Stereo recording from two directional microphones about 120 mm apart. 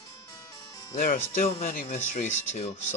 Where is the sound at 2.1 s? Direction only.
70° left (ahead or behind).